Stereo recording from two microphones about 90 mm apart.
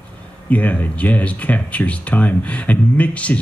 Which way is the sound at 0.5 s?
15° left (ahead or behind).